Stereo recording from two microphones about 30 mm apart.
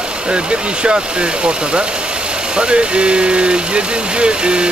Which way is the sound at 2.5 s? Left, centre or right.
Right.